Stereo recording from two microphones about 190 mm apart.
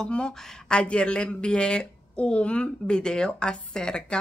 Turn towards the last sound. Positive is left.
turn(degrees=5)  # may be behind; listen again after turning